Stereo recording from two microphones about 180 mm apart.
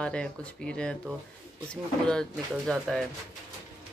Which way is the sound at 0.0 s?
5° left (ahead or behind).